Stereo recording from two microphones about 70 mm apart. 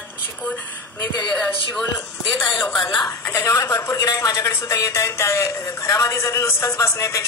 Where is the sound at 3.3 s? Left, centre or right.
Left.